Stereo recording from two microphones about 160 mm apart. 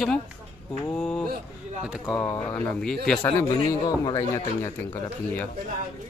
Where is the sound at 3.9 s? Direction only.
25° left (ahead or behind).